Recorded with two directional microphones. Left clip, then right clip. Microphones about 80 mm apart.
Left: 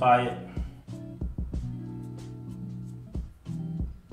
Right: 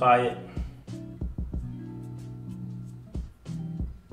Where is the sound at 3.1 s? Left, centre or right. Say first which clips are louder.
Right 1 dB; centre.